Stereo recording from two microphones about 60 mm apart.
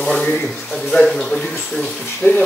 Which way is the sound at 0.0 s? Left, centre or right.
Centre.